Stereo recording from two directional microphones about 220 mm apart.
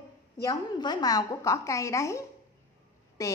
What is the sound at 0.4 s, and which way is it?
A woman's voice, 20° left (ahead or behind).